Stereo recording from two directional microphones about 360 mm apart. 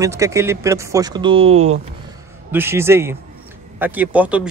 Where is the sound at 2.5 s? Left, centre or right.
Centre.